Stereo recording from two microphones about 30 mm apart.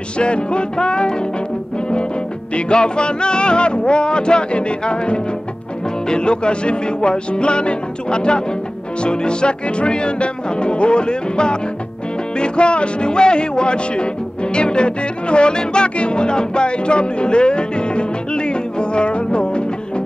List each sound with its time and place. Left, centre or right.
0.2 s music: left
2.5 s music: left